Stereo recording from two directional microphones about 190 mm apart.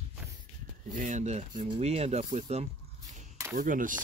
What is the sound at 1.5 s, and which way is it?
Speech, 25° right (ahead or behind).